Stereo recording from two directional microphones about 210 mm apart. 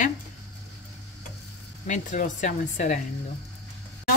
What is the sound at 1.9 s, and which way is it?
Speech, 35° left (ahead or behind).